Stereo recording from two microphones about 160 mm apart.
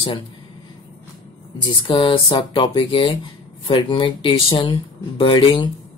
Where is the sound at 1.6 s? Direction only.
30° left (ahead or behind).